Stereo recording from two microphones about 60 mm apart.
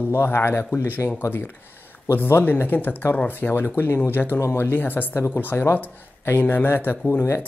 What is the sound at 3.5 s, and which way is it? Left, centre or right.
Speech, left.